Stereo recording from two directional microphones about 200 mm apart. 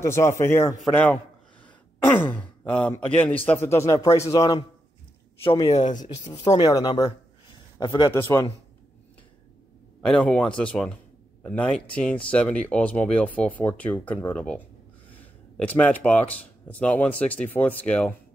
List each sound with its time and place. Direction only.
0.0 s speech: 15° left (ahead or behind)
0.9 s a sound: 5° left (ahead or behind)
2.1 s speech: 10° left (ahead or behind); by 6.0 s 35° left (ahead or behind)
6.0 s speech: 20° left (ahead or behind)
10.0 s speech: 5° left (ahead or behind)